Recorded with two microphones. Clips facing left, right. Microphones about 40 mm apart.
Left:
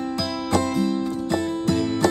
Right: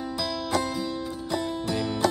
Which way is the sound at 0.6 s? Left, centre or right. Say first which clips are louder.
Left 8 dB; left.